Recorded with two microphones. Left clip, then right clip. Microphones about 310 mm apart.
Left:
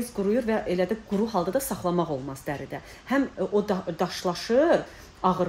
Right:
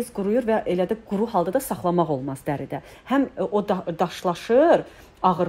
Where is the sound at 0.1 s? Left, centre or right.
Right.